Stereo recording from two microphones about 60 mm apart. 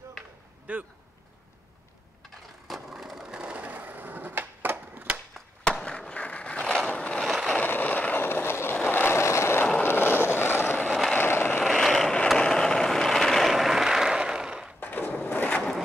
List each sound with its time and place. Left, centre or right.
0.7 s speech: right
2.9 s skateboard: centre; by 5.2 s right
5.6 s skateboard: centre
6.9 s vehicle: centre
7.2 s vehicle: centre
7.6 s vehicle: left
8.3 s vehicle: left
8.7 s vehicle: left
9.0 s vehicle: left
11.6 s vehicle: centre
14.8 s skateboard: left
15.2 s a sound: left